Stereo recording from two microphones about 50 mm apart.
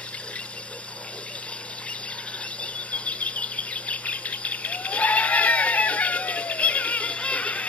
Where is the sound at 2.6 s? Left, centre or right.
Left.